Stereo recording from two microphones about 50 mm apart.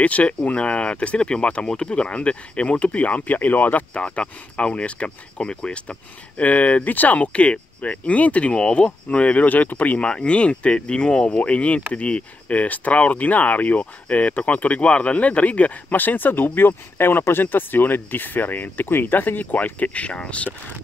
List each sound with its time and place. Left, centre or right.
0.0 s speech: left
9.9 s speech: left